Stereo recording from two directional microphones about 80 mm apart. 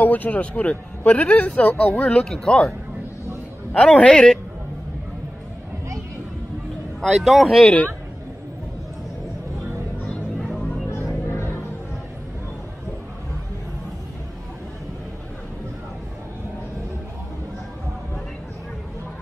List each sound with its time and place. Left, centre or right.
0.0 s speech: left
2.0 s speech: centre
3.7 s speech: centre
7.2 s speech: centre
10.4 s music: centre
11.2 s music: left